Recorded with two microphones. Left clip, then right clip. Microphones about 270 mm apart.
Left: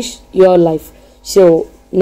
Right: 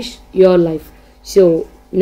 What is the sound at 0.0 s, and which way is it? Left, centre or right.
A woman's voice, centre.